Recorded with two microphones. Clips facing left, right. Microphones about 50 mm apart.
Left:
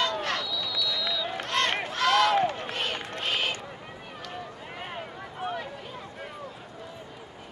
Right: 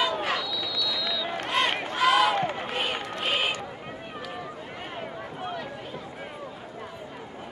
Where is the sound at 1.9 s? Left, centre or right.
Centre.